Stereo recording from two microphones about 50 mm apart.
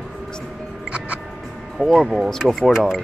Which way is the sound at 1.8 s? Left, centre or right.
Centre.